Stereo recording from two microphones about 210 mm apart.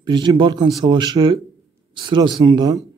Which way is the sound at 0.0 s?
20° right (ahead or behind).